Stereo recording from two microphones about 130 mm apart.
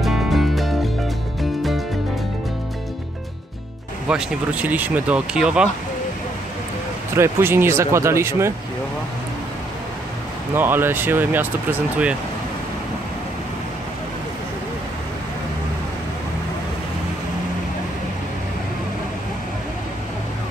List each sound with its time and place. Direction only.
0.0 s music: centre (ahead or behind)
4.1 s speech: 10° right (ahead or behind)
7.2 s speech: 20° right (ahead or behind)
10.5 s speech: 15° right (ahead or behind)